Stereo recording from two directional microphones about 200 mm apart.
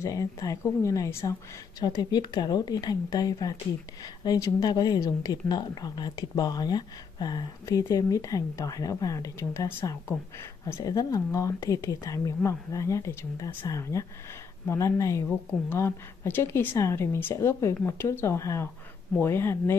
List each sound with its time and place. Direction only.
0.0 s speech: 15° left (ahead or behind)